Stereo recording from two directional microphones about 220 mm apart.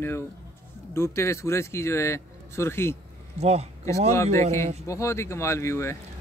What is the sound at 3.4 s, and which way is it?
Speech, 30° right (ahead or behind).